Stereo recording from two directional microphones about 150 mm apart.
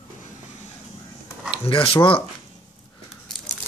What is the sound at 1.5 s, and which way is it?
Speech, 35° left (ahead or behind).